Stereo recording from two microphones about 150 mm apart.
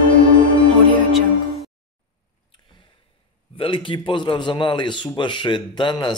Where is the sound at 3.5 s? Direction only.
35° left (ahead or behind).